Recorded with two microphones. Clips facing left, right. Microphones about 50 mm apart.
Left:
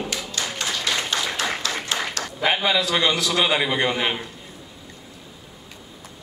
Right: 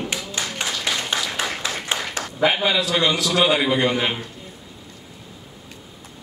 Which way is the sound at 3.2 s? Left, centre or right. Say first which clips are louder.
Right 2 dB; left.